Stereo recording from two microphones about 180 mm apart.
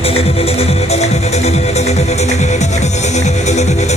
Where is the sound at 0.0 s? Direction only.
35° left (ahead or behind).